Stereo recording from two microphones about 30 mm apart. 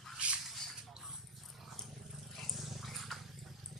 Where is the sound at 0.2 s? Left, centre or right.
Right.